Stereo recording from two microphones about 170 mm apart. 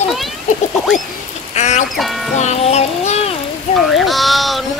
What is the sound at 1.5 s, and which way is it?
Speech, 40° left (ahead or behind).